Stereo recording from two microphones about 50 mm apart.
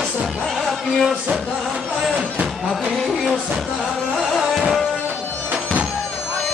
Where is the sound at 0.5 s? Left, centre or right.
Centre.